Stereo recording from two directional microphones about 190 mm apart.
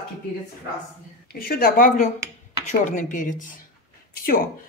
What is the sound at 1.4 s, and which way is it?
A woman's voice, 50° left (ahead or behind).